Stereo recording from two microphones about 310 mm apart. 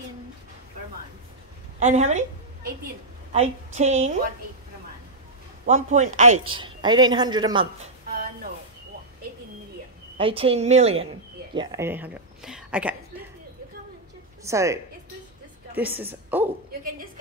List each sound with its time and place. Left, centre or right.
1.8 s a woman's voice: right
5.7 s a woman's voice: right
10.1 s speech: centre
14.4 s a woman's voice: centre